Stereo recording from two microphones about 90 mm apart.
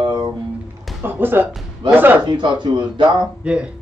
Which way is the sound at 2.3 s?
60° right (ahead or behind).